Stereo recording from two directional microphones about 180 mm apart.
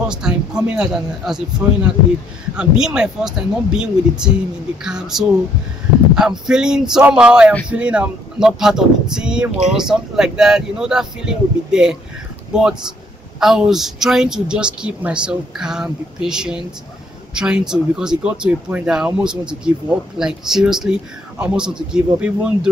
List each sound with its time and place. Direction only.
0.1 s speech: 5° right (ahead or behind)